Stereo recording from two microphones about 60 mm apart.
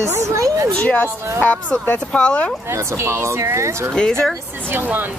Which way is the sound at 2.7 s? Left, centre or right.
Right.